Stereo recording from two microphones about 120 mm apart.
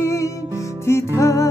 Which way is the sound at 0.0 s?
25° left (ahead or behind).